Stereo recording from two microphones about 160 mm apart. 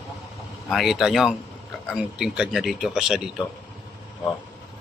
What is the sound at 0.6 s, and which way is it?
Speech, centre (ahead or behind).